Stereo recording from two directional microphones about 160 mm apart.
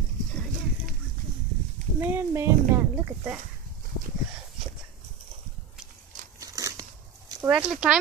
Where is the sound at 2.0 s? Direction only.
15° right (ahead or behind).